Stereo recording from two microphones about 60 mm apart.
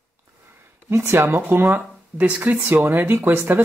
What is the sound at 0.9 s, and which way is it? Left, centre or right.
Speech, right.